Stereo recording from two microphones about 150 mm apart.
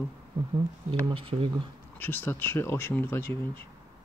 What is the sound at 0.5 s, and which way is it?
Speech, 35° right (ahead or behind).